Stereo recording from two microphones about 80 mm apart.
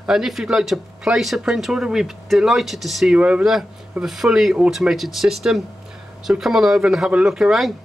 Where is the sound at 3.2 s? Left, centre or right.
Centre.